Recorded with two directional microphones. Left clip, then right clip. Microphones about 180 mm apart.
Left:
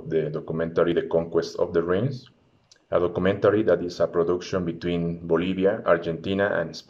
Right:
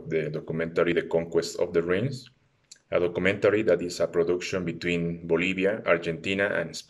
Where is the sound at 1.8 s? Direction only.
50° right (ahead or behind).